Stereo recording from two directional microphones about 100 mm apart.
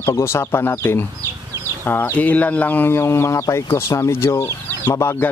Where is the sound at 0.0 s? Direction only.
25° left (ahead or behind).